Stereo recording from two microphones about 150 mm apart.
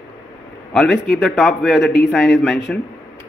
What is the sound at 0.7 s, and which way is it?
Speech, 5° left (ahead or behind).